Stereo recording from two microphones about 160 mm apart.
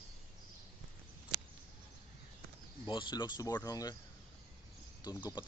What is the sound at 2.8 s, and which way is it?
Speech, 30° left (ahead or behind).